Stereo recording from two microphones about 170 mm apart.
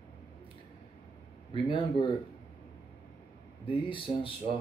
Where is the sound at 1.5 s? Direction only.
30° left (ahead or behind).